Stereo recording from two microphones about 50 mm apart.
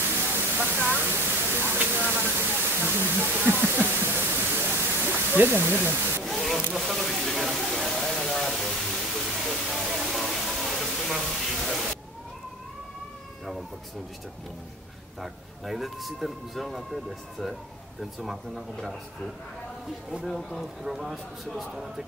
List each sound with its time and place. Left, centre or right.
0.3 s waterfall: right
1.0 s a sound: right
2.4 s waterfall: right
3.9 s pink noise: right
5.2 s speech: right
6.2 s a sound: centre
15.1 s speech: centre
20.2 s speech: centre